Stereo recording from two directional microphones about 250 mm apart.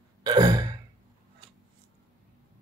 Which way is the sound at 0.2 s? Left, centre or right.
Centre.